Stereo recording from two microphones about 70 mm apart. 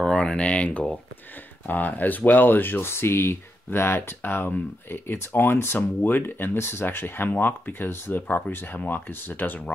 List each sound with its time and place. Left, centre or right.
0.0 s speech: centre